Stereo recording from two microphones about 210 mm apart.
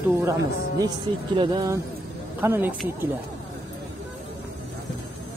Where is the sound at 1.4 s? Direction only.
20° right (ahead or behind).